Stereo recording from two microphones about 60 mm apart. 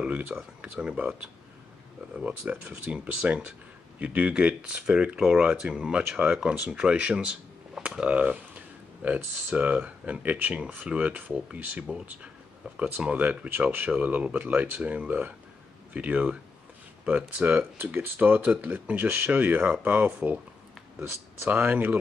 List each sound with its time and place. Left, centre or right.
0.0 s speech: right
2.1 s speech: centre
17.4 s speech: right
21.5 s speech: right